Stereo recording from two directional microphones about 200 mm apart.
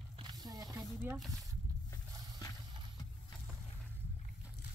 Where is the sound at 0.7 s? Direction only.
10° right (ahead or behind).